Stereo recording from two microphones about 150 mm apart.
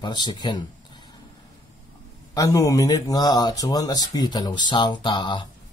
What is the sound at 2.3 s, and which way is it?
Speech, 25° left (ahead or behind).